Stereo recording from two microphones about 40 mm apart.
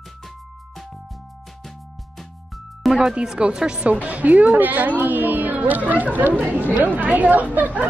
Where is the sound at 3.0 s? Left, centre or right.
Centre.